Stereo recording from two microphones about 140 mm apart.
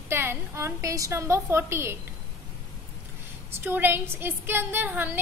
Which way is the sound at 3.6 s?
15° right (ahead or behind).